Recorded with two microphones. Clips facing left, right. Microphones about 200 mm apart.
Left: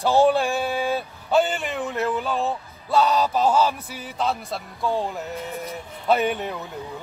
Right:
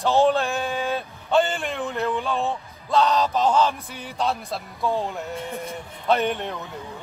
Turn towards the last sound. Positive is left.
turn(degrees=5)  # may be behind; listen again after turning